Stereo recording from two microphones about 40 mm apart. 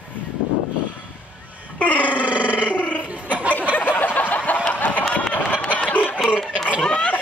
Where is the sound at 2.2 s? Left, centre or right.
Right.